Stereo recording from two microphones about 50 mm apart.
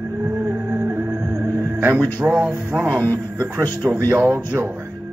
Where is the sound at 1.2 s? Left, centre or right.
Right.